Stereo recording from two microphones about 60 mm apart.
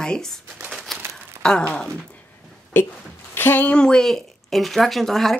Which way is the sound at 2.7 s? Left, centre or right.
Left.